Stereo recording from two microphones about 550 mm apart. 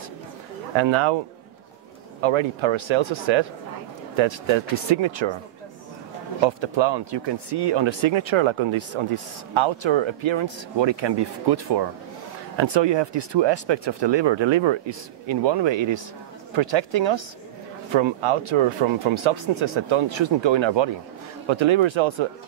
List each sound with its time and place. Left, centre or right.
0.7 s speech: right
2.2 s speech: right
6.4 s speech: right
17.9 s speech: right